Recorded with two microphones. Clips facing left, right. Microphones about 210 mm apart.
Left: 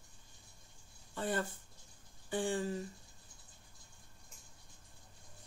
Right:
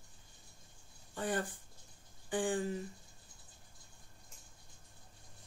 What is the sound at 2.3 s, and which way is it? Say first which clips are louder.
Speech: right 1 dB; 15° right (ahead or behind).